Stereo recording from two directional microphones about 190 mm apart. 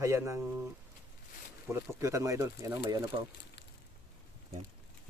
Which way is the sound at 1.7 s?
15° right (ahead or behind).